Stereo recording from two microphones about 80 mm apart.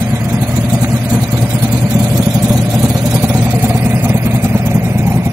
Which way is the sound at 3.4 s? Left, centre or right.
Right.